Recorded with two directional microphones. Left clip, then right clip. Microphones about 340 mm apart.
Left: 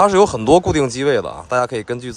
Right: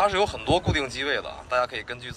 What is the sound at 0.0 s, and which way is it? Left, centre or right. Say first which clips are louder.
Speech: left 10 dB; left.